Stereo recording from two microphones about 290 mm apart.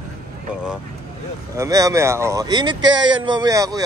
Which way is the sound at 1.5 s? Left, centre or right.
Centre.